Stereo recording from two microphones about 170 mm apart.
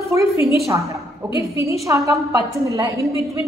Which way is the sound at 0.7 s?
20° right (ahead or behind).